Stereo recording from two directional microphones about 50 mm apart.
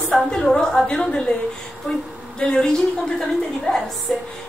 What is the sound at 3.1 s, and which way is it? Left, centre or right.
Speech, centre.